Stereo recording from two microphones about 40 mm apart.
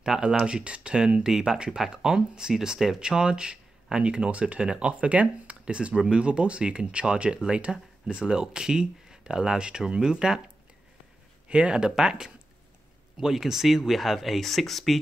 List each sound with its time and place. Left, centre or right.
0.5 s speech: right
11.4 s speech: right; by 15.0 s centre